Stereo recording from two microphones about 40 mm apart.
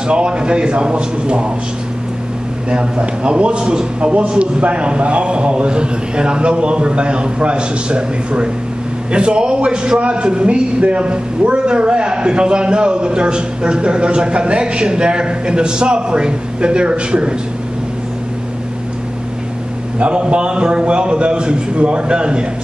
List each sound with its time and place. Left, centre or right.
0.1 s a man's voice: right
2.7 s a man's voice: right
20.0 s a man's voice: right